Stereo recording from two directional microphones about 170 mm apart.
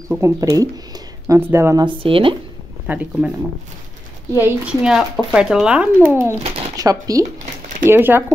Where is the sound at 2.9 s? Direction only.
10° right (ahead or behind).